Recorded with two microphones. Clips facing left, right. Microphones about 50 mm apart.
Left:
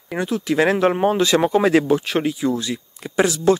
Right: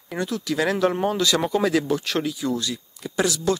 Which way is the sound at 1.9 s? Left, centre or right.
Centre.